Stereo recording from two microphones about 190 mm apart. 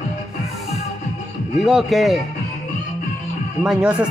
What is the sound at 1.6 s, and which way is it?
Speech, centre (ahead or behind).